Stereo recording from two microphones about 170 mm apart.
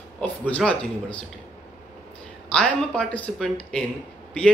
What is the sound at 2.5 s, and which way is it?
A man's voice, 5° left (ahead or behind).